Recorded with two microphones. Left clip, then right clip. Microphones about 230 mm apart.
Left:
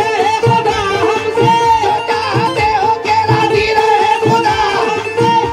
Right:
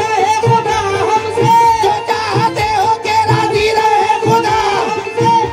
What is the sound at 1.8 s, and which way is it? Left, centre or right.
Music, right.